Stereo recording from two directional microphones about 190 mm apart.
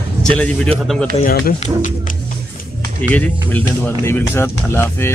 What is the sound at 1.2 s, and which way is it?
Speech, 50° left (ahead or behind).